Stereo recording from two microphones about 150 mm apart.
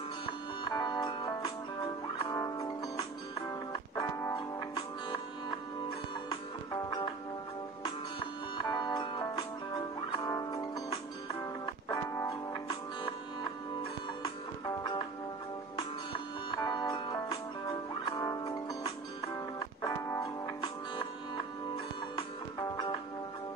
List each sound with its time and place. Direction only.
0.7 s music: 25° left (ahead or behind)
8.5 s music: 25° left (ahead or behind)
14.8 s music: 25° left (ahead or behind)
22.1 s music: 30° left (ahead or behind)